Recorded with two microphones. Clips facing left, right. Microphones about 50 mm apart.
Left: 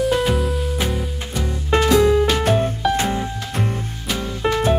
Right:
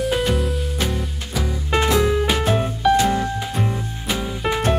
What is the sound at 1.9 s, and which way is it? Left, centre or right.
Music, centre.